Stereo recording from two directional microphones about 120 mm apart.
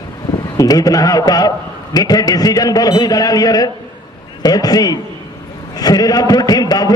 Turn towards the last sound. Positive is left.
turn(degrees=30)  # may be behind; listen again after turning